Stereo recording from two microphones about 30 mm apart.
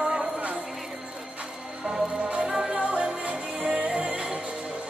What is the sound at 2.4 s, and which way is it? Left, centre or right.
Music, centre.